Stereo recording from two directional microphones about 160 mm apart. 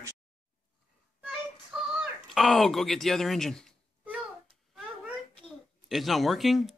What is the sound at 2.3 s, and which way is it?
Speech, centre (ahead or behind).